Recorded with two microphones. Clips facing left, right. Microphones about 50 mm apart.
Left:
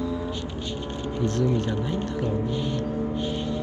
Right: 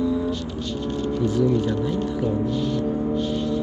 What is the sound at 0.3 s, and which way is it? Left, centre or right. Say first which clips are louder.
Music: right 4 dB; centre.